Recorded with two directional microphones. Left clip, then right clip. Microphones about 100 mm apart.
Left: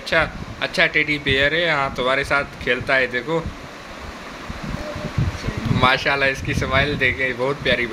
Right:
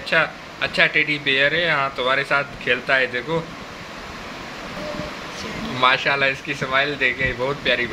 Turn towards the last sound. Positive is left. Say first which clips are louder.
# left 1 dB
turn(degrees=35)  # may be behind; listen again after turning